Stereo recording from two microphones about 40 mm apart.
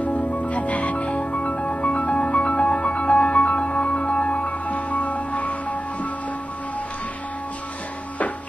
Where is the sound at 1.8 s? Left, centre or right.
Left.